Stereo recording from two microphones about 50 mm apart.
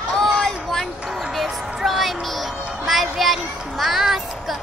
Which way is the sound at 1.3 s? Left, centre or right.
Centre.